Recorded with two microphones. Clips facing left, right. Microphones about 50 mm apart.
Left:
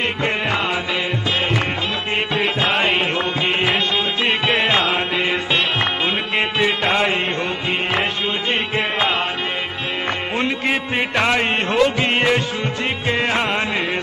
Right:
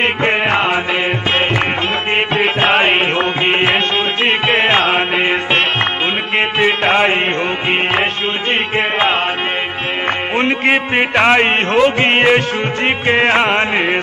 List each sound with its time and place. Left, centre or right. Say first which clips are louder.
0.0 s music: right 6 dB; right
2.3 s music: right 6 dB; right
10.3 s music: right 7 dB; right